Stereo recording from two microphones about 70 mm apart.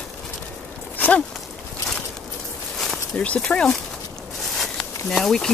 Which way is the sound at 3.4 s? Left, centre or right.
Centre.